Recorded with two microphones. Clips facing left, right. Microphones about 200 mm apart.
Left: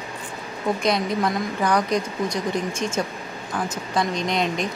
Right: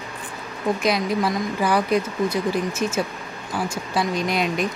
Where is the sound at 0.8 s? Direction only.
5° right (ahead or behind).